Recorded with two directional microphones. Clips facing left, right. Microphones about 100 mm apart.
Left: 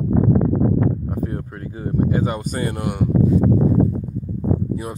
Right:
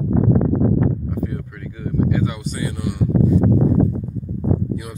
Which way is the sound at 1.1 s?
40° left (ahead or behind).